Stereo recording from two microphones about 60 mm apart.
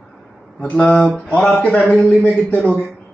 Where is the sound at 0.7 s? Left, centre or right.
Left.